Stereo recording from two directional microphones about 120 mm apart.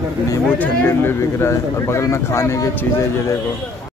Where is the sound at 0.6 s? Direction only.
15° left (ahead or behind).